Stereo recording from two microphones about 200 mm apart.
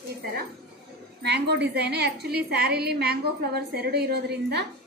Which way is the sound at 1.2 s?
55° right (ahead or behind).